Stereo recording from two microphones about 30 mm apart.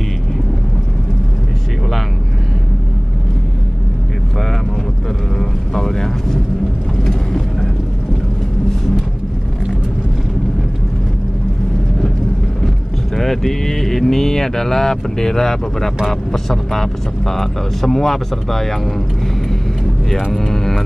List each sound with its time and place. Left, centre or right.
5.4 s vehicle: centre
12.6 s a sound: centre
16.1 s speech: centre
20.3 s speech: centre